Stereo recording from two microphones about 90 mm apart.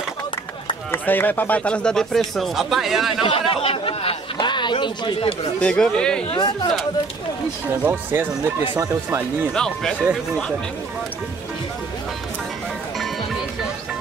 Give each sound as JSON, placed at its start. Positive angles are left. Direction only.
{"t": 0.9, "sound": "speech", "side_deg": 20}
{"t": 3.3, "sound": "speech", "side_deg": 90}
{"t": 5.6, "sound": "speech", "side_deg": 10}
{"t": 6.3, "sound": "speech", "side_deg": 60}
{"t": 7.8, "sound": "speech", "side_deg": -20}
{"t": 8.7, "sound": "speech", "side_deg": -35}
{"t": 9.5, "sound": "speech", "side_deg": 5}